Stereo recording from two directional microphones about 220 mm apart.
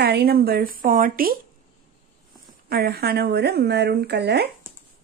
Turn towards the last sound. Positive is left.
turn(degrees=-50)  # may be behind; listen again after turning